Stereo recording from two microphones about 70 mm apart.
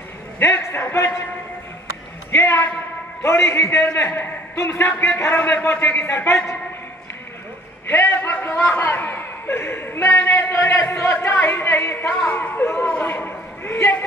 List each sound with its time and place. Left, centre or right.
0.4 s a man's voice: left
3.2 s a man's voice: left
7.8 s a man's voice: left
8.1 s a man's voice: left
10.5 s a man's voice: left
11.2 s a man's voice: left
13.0 s a man's voice: left